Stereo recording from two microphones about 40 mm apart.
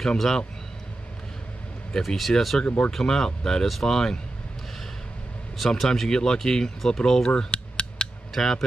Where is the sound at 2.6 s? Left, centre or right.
Left.